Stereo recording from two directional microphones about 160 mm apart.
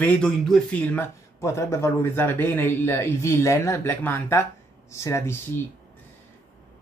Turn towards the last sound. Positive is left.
turn(degrees=15)  # may be behind; listen again after turning